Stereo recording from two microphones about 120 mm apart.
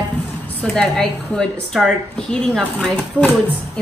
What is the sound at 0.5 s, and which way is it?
A woman's voice, 10° left (ahead or behind).